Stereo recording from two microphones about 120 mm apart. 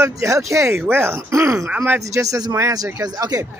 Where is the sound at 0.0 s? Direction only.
25° right (ahead or behind).